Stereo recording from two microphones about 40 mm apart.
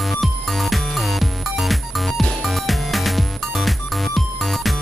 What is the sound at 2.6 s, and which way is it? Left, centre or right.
Music, centre.